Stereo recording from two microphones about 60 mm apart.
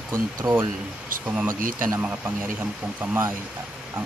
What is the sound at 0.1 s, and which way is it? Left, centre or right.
Speech, right.